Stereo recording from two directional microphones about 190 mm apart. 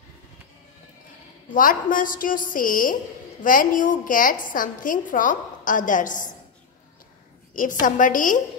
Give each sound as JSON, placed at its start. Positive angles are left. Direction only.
{"t": 1.5, "sound": "a woman's voice", "side_deg": 45}
{"t": 7.5, "sound": "a woman's voice", "side_deg": 45}